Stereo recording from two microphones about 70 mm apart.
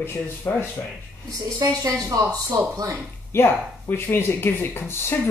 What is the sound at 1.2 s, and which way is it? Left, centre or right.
A woman's voice, right.